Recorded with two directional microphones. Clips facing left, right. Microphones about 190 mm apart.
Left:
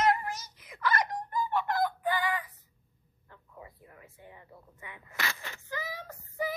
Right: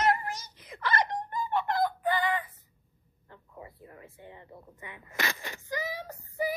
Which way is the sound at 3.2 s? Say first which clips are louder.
Right 3 dB; 25° right (ahead or behind).